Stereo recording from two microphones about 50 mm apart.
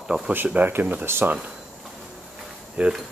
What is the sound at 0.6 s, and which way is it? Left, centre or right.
Speech, right.